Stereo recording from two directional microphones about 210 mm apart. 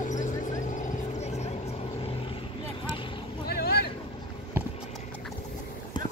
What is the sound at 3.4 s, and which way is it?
Vehicle, 50° left (ahead or behind).